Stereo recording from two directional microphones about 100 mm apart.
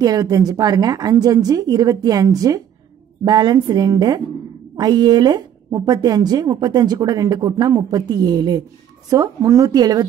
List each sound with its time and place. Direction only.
0.0 s speech: 40° right (ahead or behind)
3.3 s a woman's voice: 45° right (ahead or behind)